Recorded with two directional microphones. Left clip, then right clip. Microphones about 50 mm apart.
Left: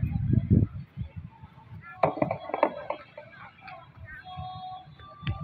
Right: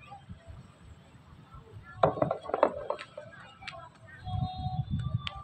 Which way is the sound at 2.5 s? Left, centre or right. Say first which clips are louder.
Even; right.